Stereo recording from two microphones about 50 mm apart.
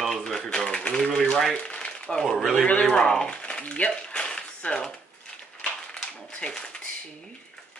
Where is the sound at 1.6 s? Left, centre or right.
Centre.